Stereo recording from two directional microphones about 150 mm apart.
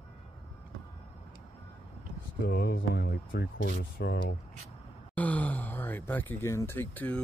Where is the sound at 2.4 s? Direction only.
90° left.